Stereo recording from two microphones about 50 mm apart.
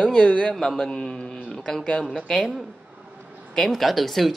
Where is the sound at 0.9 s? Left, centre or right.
Centre.